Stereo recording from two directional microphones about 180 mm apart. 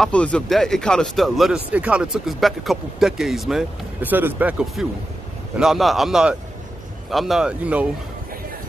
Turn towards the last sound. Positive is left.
turn(degrees=-5)  # may be behind; listen again after turning